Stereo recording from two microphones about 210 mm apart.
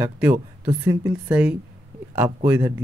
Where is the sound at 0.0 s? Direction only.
5° right (ahead or behind).